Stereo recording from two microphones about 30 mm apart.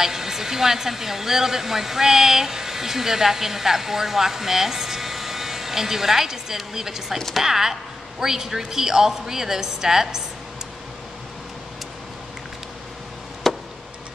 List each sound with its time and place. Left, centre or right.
0.0 s a woman's voice: centre
13.4 s chop: centre